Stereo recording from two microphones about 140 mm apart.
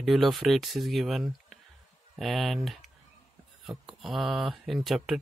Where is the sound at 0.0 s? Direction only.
Centre (ahead or behind).